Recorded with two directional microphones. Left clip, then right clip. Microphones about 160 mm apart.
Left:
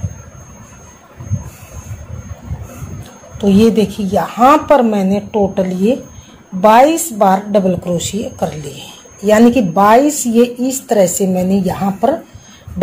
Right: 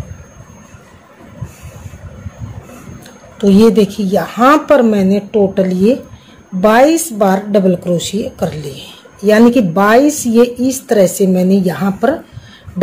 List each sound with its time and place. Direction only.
3.3 s a woman's voice: 35° right (ahead or behind)